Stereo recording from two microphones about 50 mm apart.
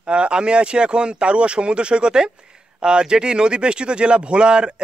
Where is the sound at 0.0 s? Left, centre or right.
Right.